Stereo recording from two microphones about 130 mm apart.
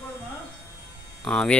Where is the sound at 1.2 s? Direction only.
5° left (ahead or behind).